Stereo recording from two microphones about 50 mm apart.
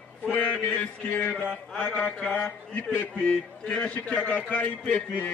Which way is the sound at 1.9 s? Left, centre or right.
Left.